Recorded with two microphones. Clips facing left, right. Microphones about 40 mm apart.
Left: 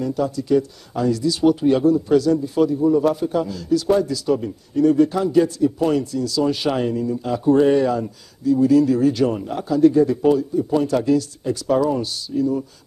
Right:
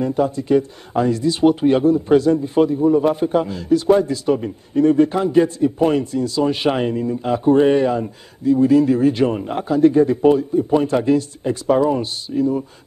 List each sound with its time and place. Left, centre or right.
0.0 s a man's voice: right